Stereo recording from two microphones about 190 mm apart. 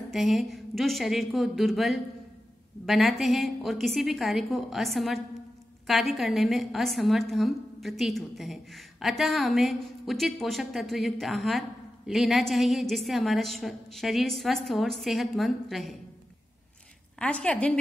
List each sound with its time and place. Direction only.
0.1 s a woman's voice: centre (ahead or behind)
17.2 s a woman's voice: 5° left (ahead or behind)